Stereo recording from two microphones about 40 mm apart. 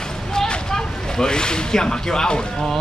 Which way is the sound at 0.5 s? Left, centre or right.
Centre.